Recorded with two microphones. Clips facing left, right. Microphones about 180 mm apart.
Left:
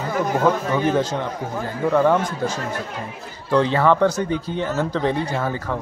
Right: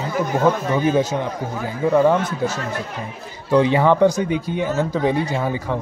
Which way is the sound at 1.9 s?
10° right (ahead or behind).